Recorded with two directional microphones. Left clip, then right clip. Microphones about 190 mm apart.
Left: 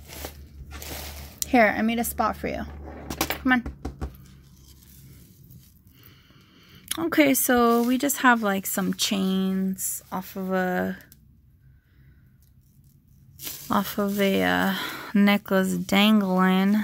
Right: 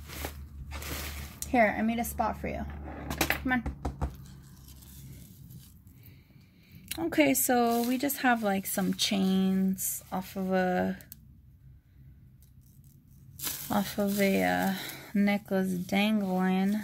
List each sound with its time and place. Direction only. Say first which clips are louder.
1.4 s speech: left 6 dB; 45° left (ahead or behind)
6.9 s speech: left 5 dB; 40° left (ahead or behind)
13.7 s speech: left 6 dB; 35° left (ahead or behind)